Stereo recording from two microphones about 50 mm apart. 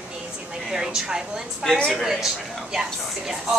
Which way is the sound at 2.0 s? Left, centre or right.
Centre.